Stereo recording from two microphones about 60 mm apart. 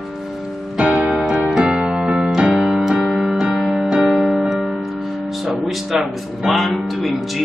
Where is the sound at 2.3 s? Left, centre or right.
Centre.